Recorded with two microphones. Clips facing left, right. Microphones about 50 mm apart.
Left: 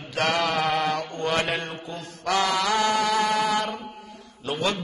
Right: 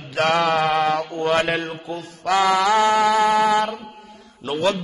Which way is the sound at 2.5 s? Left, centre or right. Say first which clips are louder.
Right 6 dB; centre.